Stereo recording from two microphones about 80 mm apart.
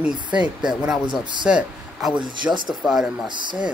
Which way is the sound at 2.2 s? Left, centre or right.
Right.